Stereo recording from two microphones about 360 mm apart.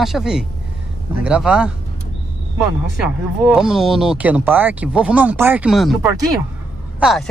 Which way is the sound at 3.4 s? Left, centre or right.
Centre.